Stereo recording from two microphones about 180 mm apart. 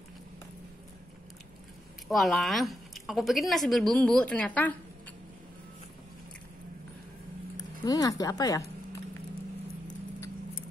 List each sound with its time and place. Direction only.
2.0 s speech: centre (ahead or behind)
7.5 s speech: 20° left (ahead or behind)